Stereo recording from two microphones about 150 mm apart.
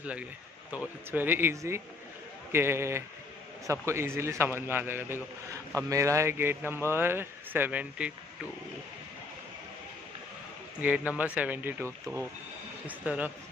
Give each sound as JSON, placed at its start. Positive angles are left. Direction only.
{"t": 0.7, "sound": "a man's voice", "side_deg": -10}
{"t": 10.8, "sound": "a man's voice", "side_deg": -10}
{"t": 12.8, "sound": "a man's voice", "side_deg": -10}